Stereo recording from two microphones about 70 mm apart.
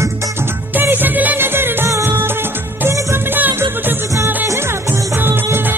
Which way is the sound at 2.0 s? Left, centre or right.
Right.